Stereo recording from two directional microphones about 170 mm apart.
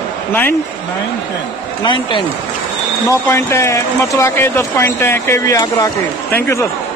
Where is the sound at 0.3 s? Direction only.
10° left (ahead or behind).